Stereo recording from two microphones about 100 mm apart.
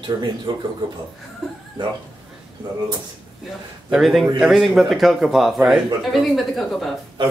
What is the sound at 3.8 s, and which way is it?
A man's voice, 5° right (ahead or behind).